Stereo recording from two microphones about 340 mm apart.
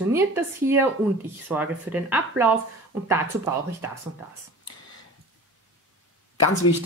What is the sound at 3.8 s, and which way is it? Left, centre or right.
Speech, centre.